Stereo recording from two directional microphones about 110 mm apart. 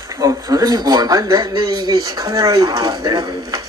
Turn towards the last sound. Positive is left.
turn(degrees=-35)  # may be behind; listen again after turning